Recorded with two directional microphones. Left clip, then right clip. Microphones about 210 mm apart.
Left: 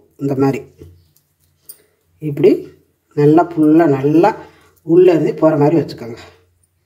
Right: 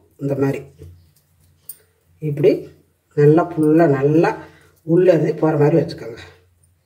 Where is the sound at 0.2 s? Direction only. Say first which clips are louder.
Left 4 dB; 35° left (ahead or behind).